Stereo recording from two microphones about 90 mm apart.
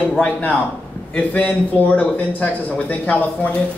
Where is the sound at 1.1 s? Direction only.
15° left (ahead or behind).